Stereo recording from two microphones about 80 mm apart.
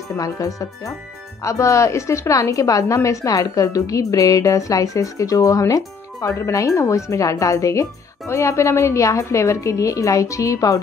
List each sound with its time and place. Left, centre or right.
0.1 s a woman's voice: left